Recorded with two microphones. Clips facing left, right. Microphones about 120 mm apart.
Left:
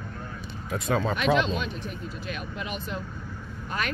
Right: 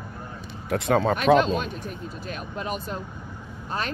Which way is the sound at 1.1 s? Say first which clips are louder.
Right 5 dB; 45° right (ahead or behind).